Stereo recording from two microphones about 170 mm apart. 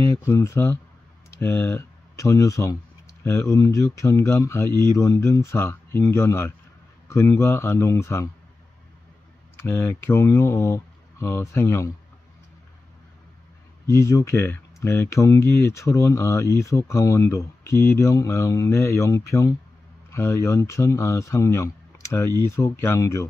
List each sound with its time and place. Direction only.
0.2 s speech: 15° left (ahead or behind)
9.6 s speech: 15° left (ahead or behind)
13.8 s speech: 15° left (ahead or behind)